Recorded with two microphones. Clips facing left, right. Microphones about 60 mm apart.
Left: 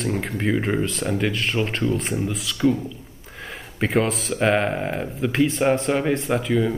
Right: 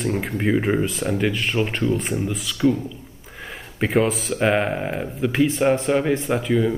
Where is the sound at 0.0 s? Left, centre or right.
Centre.